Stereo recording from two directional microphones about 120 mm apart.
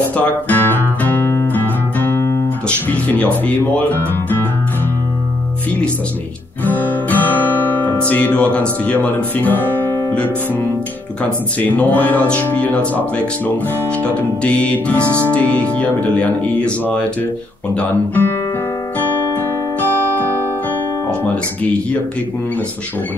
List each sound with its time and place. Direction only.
0.1 s guitar: 15° left (ahead or behind)
2.9 s speech: 10° left (ahead or behind)
6.6 s music: 15° left (ahead or behind)
8.0 s speech: 10° left (ahead or behind)
19.8 s music: 15° left (ahead or behind)